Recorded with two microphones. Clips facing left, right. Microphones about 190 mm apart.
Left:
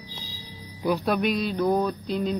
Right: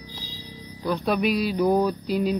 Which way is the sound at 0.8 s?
5° left (ahead or behind).